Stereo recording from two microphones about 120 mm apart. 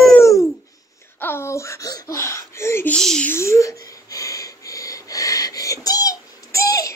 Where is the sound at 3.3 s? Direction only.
25° left (ahead or behind).